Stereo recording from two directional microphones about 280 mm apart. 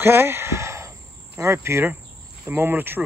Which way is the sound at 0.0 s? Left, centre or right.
Centre.